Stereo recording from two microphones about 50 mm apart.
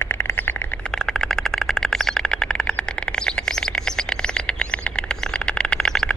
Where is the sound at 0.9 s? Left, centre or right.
Centre.